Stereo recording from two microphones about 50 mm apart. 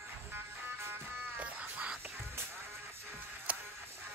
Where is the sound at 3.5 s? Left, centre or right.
Right.